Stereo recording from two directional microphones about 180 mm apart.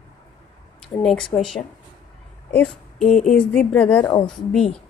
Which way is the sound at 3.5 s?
5° left (ahead or behind).